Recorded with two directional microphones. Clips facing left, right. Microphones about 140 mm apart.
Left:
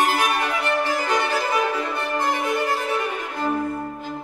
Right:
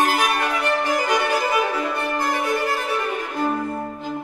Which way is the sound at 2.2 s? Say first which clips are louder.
Left 1 dB; 20° left (ahead or behind).